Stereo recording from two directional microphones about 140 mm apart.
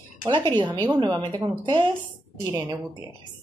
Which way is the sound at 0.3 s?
35° right (ahead or behind).